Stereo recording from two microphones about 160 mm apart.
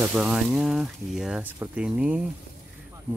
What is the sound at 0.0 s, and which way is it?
Speech, 5° right (ahead or behind).